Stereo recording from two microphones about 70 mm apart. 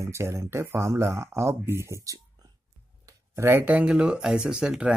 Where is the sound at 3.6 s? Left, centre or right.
Right.